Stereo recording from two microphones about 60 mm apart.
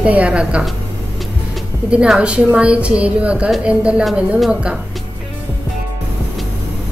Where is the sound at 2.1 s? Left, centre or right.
Centre.